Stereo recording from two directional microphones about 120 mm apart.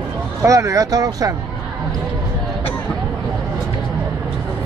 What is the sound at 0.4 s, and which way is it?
Speech, 25° right (ahead or behind).